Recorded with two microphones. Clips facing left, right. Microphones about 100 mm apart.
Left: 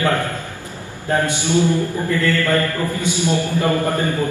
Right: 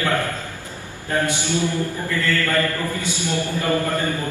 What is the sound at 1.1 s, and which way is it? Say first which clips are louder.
Mantra: left 4 dB; 20° left (ahead or behind).